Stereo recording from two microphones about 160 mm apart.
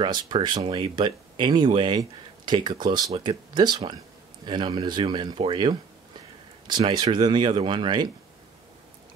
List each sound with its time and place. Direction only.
0.0 s speech: 25° right (ahead or behind)